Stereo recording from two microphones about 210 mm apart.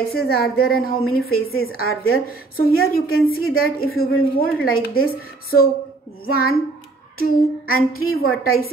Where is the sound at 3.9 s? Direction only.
80° left.